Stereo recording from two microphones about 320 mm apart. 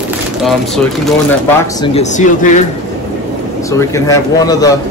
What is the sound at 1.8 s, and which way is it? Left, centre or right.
Speech, centre.